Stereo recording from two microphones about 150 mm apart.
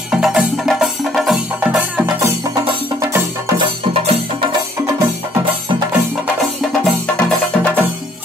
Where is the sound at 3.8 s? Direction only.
40° right (ahead or behind).